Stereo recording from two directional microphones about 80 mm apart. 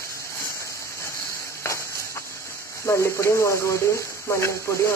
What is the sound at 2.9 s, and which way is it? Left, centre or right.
Speech, left.